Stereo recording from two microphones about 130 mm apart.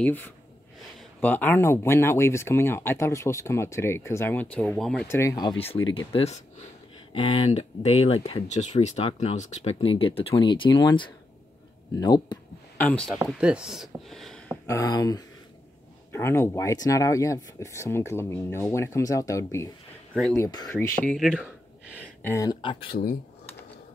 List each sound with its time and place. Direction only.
0.0 s speech: 15° left (ahead or behind)
5.0 s speech: 20° left (ahead or behind)
5.9 s speech: 50° left (ahead or behind)
7.1 s speech: 45° left (ahead or behind); by 9.8 s 60° left (ahead or behind)
9.8 s speech: 45° left (ahead or behind)
12.7 s speech: 10° left (ahead or behind)
13.4 s speech: 10° right (ahead or behind)
14.7 s speech: 25° left (ahead or behind)
20.7 s speech: 10° left (ahead or behind)
21.2 s speech: 5° right (ahead or behind)
22.2 s speech: 25° left (ahead or behind)